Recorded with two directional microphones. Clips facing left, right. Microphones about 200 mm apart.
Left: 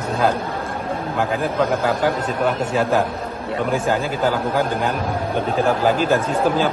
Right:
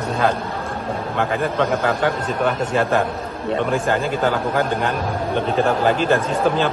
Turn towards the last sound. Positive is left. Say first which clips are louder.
# even
turn(degrees=5)  # may be behind; listen again after turning